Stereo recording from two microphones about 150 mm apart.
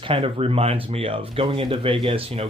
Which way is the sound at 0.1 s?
40° right (ahead or behind).